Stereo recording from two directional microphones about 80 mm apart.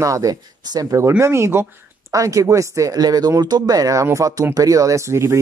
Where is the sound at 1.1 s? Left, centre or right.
Right.